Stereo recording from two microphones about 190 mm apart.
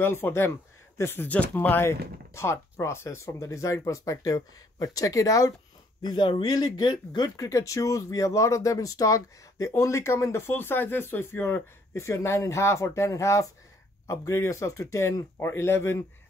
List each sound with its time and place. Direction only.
0.0 s speech: 10° left (ahead or behind)